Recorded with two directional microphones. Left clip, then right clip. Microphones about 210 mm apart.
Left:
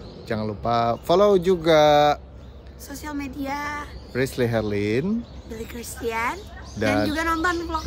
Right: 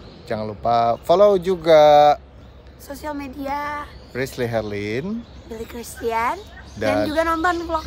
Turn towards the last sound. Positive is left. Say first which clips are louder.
# right 3 dB
turn(degrees=0)  # may be behind; listen again after turning